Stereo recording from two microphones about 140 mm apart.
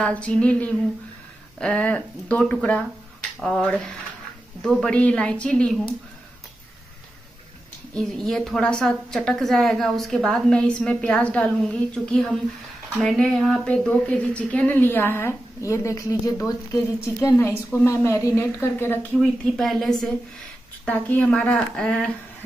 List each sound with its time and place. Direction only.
0.0 s a woman's voice: 10° left (ahead or behind)
7.9 s a woman's voice: 5° left (ahead or behind)
19.4 s a woman's voice: centre (ahead or behind)